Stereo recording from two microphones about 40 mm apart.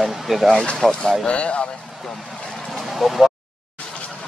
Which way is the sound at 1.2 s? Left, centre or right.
Left.